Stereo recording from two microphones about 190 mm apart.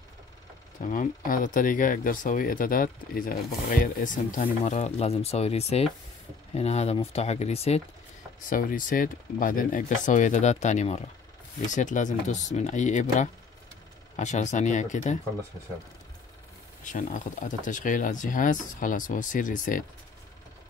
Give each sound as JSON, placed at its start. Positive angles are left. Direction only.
{"t": 0.7, "sound": "speech", "side_deg": 45}
{"t": 8.5, "sound": "speech", "side_deg": 45}
{"t": 16.8, "sound": "speech", "side_deg": 40}